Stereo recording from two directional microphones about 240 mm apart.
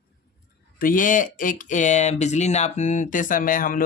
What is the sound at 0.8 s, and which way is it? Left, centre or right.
Speech, left.